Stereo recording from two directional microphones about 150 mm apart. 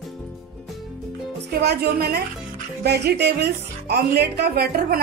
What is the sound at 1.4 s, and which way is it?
Speech, 90° right.